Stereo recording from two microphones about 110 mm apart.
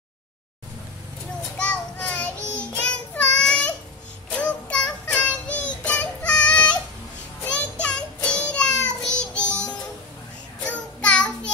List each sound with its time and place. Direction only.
1.6 s child singing: 10° left (ahead or behind)
2.3 s child singing: 20° right (ahead or behind)
2.7 s child singing: 10° left (ahead or behind)